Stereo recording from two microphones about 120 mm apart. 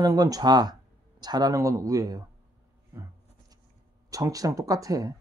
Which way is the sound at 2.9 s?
25° right (ahead or behind).